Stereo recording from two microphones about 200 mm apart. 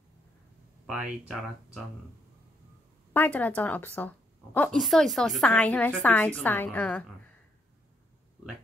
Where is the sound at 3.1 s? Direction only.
10° left (ahead or behind).